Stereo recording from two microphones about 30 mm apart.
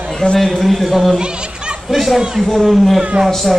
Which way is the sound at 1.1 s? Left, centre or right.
Right.